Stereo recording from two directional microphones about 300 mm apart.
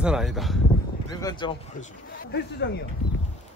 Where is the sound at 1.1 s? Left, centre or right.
Centre.